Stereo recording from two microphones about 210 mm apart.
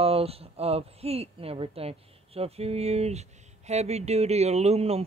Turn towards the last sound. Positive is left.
turn(degrees=-30)  # may be behind; listen again after turning